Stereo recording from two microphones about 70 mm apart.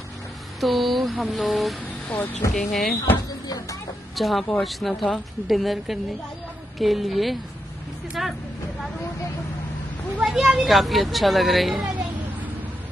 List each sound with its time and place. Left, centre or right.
0.6 s speech: centre
3.4 s speech: left
4.1 s speech: centre
10.2 s speech: centre